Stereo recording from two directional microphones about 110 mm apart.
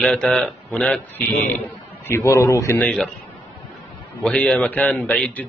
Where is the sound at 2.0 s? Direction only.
25° left (ahead or behind).